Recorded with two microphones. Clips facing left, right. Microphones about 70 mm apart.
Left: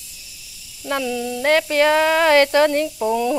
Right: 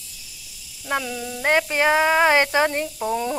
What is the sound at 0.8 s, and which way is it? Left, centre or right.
Speech, centre.